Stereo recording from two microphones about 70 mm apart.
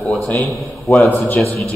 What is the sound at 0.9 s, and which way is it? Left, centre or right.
Speech, left.